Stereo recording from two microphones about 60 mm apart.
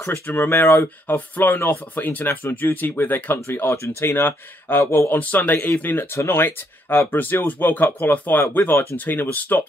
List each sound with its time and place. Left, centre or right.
0.0 s speech: left